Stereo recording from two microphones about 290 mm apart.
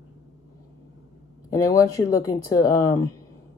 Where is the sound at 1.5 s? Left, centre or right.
Centre.